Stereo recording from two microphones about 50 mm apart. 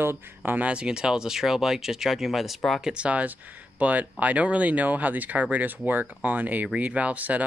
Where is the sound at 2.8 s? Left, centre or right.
Right.